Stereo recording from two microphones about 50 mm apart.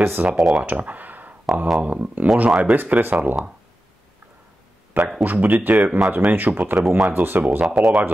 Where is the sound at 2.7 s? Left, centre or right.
Right.